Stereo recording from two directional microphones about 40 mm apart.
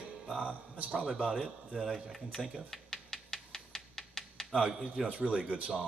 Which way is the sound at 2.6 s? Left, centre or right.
Centre.